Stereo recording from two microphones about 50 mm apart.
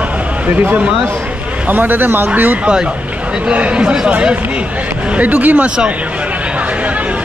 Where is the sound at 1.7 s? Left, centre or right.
Right.